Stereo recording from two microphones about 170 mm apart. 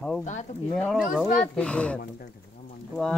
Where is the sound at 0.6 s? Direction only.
5° left (ahead or behind).